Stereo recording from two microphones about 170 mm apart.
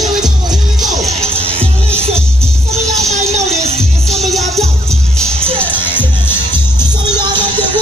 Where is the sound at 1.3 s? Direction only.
35° right (ahead or behind).